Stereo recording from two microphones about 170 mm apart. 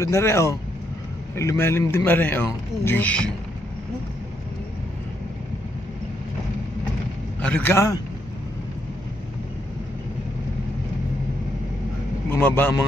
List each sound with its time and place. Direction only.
0.0 s speech: 15° left (ahead or behind)
7.4 s speech: 10° left (ahead or behind)
12.3 s speech: 10° left (ahead or behind)